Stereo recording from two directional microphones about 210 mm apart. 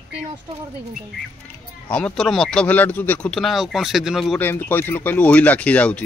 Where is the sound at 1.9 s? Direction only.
5° left (ahead or behind).